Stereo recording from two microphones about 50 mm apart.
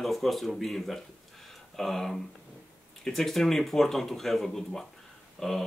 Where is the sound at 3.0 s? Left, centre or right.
Centre.